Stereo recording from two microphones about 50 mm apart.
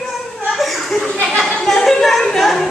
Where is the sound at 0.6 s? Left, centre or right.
Centre.